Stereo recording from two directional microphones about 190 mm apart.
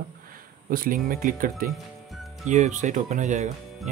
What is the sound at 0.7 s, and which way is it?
Speech, 50° right (ahead or behind).